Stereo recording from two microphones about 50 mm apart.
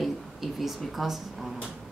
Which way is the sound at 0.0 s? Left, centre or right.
Centre.